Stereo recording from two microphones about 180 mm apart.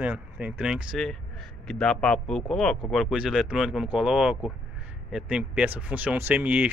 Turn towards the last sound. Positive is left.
turn(degrees=-10)  # may be behind; listen again after turning